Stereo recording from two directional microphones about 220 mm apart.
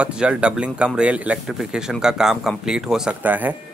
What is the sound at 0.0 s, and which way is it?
Speech, 5° right (ahead or behind).